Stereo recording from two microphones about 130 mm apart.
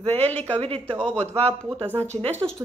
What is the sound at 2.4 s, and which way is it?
Speech, 40° right (ahead or behind).